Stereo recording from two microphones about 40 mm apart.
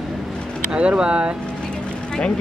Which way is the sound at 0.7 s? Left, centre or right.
Right.